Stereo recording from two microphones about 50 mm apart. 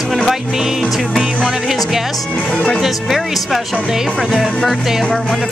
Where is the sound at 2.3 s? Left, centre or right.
Centre.